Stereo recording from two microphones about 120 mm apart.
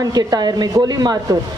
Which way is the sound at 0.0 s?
35° right (ahead or behind).